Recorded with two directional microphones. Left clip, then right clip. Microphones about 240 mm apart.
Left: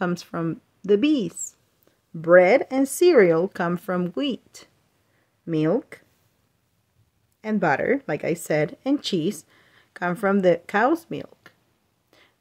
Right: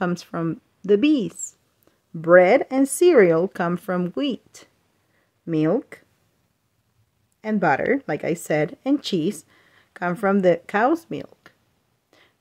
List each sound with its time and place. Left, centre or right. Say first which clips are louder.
0.0 s speech: right 1 dB; centre
7.4 s speech: right 1 dB; centre
12.1 s a sound: even; centre